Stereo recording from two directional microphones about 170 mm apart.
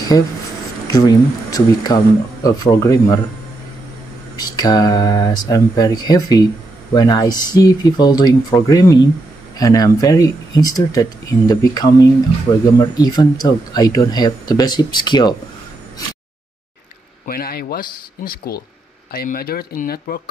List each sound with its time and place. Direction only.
0.1 s speech: 25° left (ahead or behind)
4.4 s speech: 25° left (ahead or behind)
17.3 s speech: 60° left (ahead or behind)